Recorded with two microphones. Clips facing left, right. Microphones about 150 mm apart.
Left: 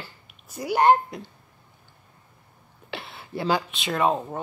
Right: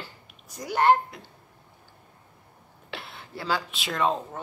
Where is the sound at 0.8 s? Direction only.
20° left (ahead or behind).